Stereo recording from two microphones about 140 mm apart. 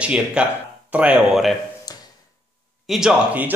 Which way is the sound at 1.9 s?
25° left (ahead or behind).